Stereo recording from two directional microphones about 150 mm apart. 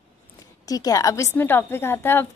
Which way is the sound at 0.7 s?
25° left (ahead or behind).